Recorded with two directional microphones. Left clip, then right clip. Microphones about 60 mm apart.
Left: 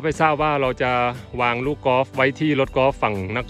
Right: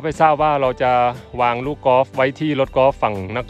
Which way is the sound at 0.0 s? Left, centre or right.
Right.